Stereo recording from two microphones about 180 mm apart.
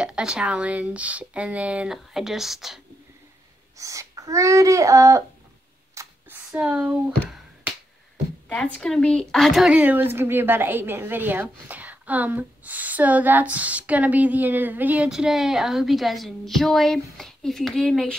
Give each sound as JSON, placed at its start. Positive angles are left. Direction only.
{"t": 0.0, "sound": "speech", "side_deg": -5}
{"t": 3.7, "sound": "a woman's voice", "side_deg": -15}
{"t": 5.9, "sound": "a sound", "side_deg": -10}
{"t": 8.5, "sound": "a woman's voice", "side_deg": 5}